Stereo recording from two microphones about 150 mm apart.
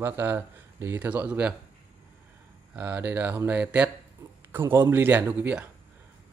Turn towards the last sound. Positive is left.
turn(degrees=-10)  # may be behind; listen again after turning